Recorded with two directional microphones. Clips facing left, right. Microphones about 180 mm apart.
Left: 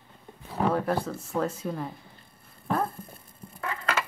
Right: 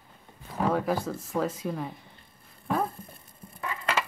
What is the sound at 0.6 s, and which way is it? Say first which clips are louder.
Speech: even; centre (ahead or behind).